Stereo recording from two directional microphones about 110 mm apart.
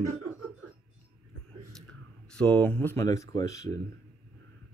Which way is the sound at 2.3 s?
10° left (ahead or behind).